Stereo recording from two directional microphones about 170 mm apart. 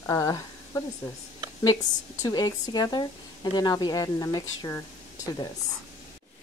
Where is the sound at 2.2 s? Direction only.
25° left (ahead or behind).